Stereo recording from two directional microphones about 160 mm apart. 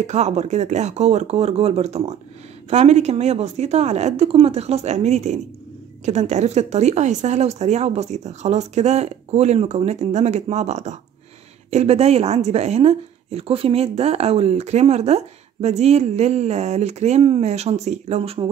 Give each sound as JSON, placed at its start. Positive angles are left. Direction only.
{"t": 0.0, "sound": "a woman's voice", "side_deg": -45}